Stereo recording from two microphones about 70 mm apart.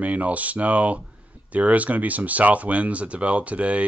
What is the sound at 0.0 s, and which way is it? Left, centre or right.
Speech, right.